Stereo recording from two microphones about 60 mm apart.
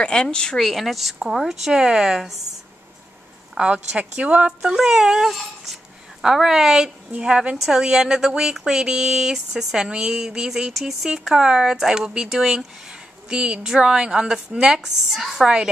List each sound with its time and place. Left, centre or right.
0.0 s speech: centre
3.5 s a woman's voice: centre
4.5 s a woman's voice: centre
7.5 s speech: centre